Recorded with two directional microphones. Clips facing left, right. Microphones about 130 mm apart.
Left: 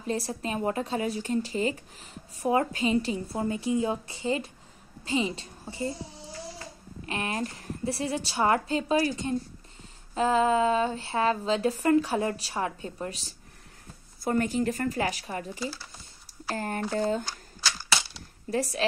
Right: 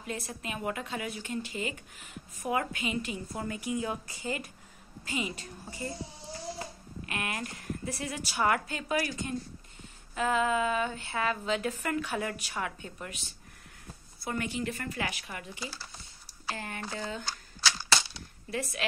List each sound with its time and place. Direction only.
0.0 s speech: 35° left (ahead or behind)
7.1 s speech: 30° left (ahead or behind)
18.5 s speech: 35° left (ahead or behind)